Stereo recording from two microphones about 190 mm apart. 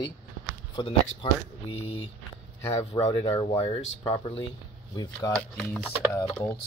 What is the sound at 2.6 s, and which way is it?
Speech, 15° left (ahead or behind).